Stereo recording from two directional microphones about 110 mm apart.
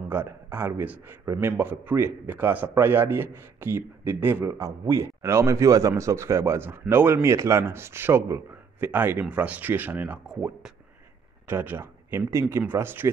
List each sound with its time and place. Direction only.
0.1 s a man's voice: 20° right (ahead or behind)
1.2 s a man's voice: 30° right (ahead or behind)
1.6 s a man's voice: 20° right (ahead or behind)
11.4 s a man's voice: 20° right (ahead or behind)